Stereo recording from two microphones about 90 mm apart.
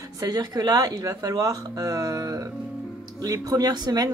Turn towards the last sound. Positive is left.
turn(degrees=-45)  # may be behind; listen again after turning